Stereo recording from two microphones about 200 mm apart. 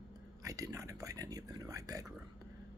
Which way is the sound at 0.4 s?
15° right (ahead or behind).